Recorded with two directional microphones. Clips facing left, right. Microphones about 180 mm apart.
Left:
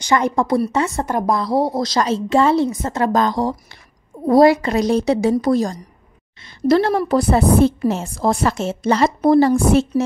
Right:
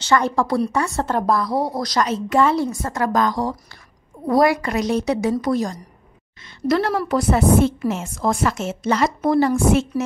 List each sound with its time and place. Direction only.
0.0 s a woman's voice: 20° left (ahead or behind)
1.4 s a woman's voice: 25° left (ahead or behind)